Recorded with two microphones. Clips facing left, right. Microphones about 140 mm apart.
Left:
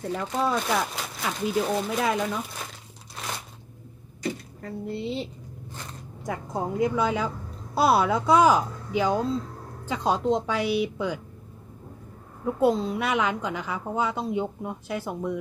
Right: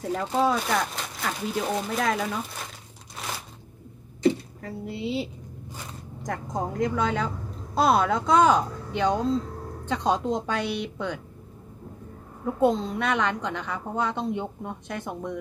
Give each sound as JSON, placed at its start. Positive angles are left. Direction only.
{"t": 0.4, "sound": "a woman's voice", "side_deg": 0}
{"t": 4.6, "sound": "zipper", "side_deg": 0}
{"t": 6.2, "sound": "a woman's voice", "side_deg": 5}
{"t": 12.5, "sound": "a woman's voice", "side_deg": 5}